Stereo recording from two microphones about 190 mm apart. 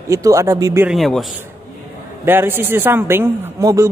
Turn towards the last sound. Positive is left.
turn(degrees=-15)  # may be behind; listen again after turning